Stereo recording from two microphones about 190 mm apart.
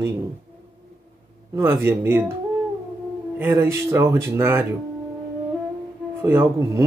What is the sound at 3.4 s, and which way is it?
Speech, 10° right (ahead or behind).